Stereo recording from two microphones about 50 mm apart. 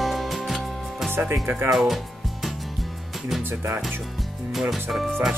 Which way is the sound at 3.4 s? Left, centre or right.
Right.